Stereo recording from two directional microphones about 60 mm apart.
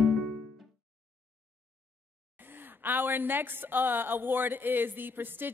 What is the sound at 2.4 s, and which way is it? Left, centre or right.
A woman's voice, right.